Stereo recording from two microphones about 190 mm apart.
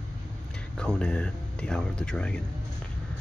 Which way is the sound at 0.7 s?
5° left (ahead or behind).